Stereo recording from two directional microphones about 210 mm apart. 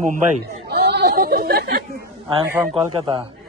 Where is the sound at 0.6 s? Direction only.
50° right (ahead or behind).